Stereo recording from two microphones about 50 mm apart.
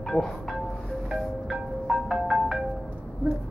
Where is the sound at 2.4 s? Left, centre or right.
Centre.